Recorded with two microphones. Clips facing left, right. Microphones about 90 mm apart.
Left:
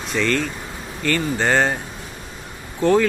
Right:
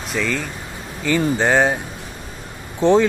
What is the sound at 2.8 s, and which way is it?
Speech, 20° right (ahead or behind).